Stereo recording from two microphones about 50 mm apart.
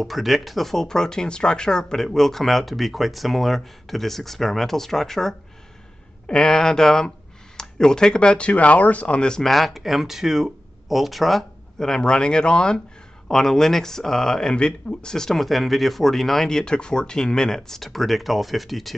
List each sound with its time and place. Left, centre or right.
0.0 s speech: centre
6.2 s speech: centre
9.5 s speech: centre
11.8 s speech: centre